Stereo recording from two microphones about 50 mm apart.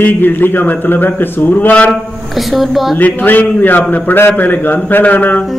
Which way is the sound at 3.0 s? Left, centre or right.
Left.